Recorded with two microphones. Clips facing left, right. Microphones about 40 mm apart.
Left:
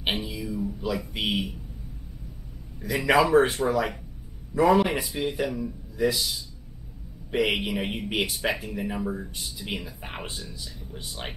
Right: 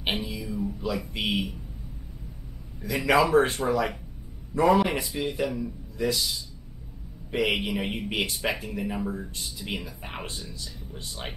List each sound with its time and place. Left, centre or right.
0.0 s a sound: centre
0.5 s music: centre
1.1 s speech: centre
3.1 s speech: centre
4.6 s speech: centre
4.8 s a man's voice: centre